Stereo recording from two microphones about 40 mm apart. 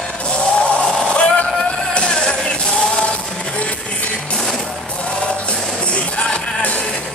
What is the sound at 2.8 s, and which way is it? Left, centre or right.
Music, left.